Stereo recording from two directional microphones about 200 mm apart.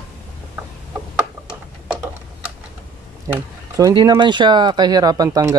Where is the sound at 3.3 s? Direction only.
15° right (ahead or behind).